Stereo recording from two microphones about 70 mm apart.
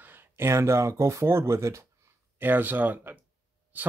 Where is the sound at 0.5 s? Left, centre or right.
Right.